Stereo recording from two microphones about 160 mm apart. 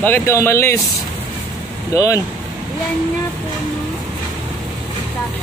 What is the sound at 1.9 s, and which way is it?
Speech, 20° left (ahead or behind).